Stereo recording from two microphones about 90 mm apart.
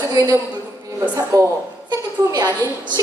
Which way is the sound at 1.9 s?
50° right (ahead or behind).